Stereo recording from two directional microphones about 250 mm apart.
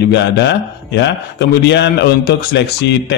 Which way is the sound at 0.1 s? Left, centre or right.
Left.